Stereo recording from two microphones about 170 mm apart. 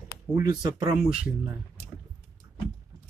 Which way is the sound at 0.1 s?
20° right (ahead or behind).